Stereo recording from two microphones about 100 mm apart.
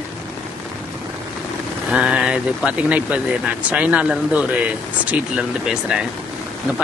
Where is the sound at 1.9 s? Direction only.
10° right (ahead or behind).